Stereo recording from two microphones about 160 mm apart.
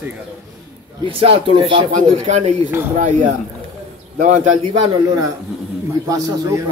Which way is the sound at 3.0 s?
50° right (ahead or behind).